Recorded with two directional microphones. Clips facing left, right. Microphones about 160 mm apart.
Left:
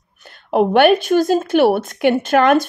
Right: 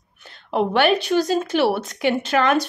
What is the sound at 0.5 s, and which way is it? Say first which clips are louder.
Speech: left 6 dB; 50° left (ahead or behind).